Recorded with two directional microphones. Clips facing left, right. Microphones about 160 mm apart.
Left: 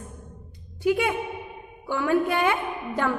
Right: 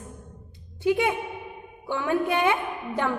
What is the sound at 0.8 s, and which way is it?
A man's voice, 20° right (ahead or behind).